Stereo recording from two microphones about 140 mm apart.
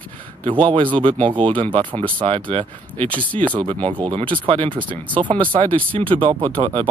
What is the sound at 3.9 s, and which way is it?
Speech, 40° right (ahead or behind).